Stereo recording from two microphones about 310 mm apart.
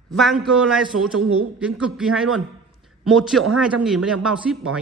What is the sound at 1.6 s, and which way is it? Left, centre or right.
A man's voice, centre.